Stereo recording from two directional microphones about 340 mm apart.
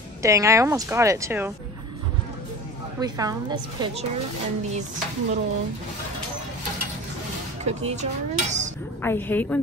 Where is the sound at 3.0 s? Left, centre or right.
Centre.